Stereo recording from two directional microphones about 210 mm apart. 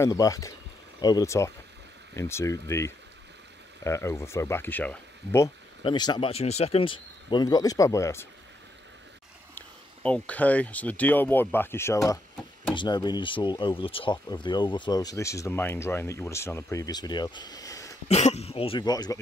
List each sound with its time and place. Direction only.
0.0 s speech: 15° left (ahead or behind)
9.6 s speech: 5° left (ahead or behind)
18.0 s speech: 30° left (ahead or behind)